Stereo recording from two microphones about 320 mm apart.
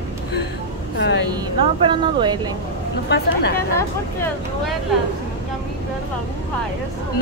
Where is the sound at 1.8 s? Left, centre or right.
Centre.